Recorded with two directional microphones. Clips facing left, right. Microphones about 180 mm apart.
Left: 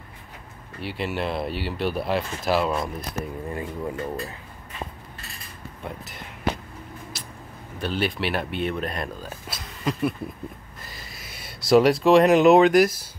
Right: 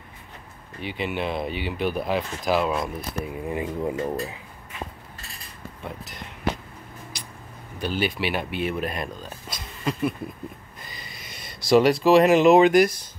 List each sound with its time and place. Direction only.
0.7 s speech: centre (ahead or behind); by 4.4 s 15° right (ahead or behind)
5.9 s speech: centre (ahead or behind)
7.1 s a sound: centre (ahead or behind)
7.8 s speech: centre (ahead or behind)
9.2 s a sound: centre (ahead or behind)
10.9 s speech: centre (ahead or behind)